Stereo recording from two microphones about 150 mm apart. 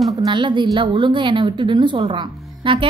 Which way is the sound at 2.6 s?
35° right (ahead or behind).